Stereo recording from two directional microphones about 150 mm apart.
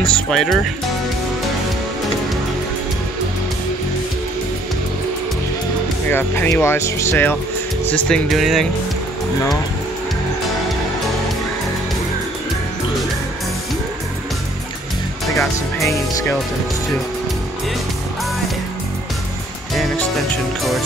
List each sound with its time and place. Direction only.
0.0 s speech: 5° left (ahead or behind)
6.0 s speech: 15° left (ahead or behind)
7.9 s speech: centre (ahead or behind)
15.3 s speech: 20° left (ahead or behind)